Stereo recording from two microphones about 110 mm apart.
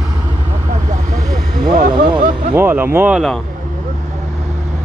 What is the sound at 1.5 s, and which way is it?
Vehicle, 40° right (ahead or behind).